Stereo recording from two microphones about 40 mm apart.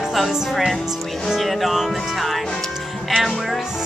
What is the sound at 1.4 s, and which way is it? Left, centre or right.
Speech, centre.